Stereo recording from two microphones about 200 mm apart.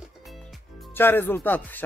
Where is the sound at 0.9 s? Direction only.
10° left (ahead or behind).